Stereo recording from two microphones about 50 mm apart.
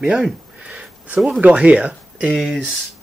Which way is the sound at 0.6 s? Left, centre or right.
Right.